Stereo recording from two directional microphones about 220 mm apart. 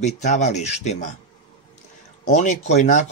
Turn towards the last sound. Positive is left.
turn(degrees=35)  # may be behind; listen again after turning